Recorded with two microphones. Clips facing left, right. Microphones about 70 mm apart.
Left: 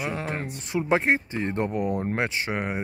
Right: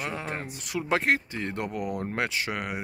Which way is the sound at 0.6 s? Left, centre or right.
Left.